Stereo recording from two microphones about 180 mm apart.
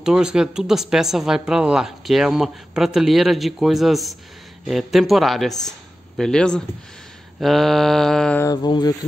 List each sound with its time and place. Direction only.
0.0 s speech: 5° right (ahead or behind)
8.5 s speech: 20° left (ahead or behind)